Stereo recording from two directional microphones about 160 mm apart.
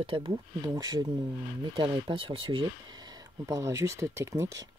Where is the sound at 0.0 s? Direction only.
30° right (ahead or behind).